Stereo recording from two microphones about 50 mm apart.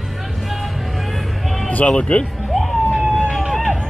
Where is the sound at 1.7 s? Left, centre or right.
Left.